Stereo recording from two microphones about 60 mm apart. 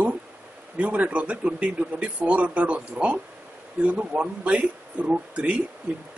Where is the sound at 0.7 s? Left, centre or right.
Right.